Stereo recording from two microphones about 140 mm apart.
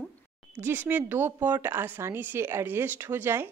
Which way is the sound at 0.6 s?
15° right (ahead or behind).